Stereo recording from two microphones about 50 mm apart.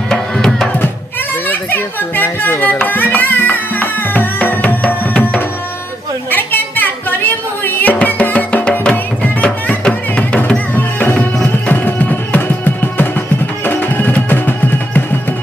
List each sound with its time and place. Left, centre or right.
0.1 s music: centre
1.5 s a sound: left
2.9 s music: left
4.8 s music: left
6.3 s music: left
9.8 s music: left
10.7 s music: left